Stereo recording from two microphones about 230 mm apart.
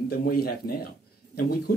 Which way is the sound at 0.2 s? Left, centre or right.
Left.